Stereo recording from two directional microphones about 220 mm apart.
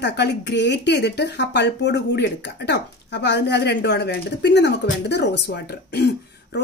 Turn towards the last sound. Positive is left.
turn(degrees=50)  # may be behind; listen again after turning